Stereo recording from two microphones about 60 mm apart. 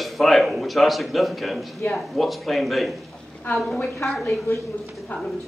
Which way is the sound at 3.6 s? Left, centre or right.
Centre.